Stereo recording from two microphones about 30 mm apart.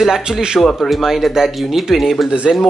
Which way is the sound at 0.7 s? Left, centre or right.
Centre.